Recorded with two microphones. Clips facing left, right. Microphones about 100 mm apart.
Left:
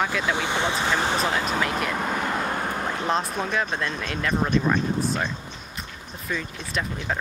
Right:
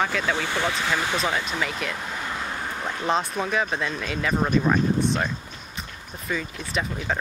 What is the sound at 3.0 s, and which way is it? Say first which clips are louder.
Speech: right 3 dB; centre (ahead or behind).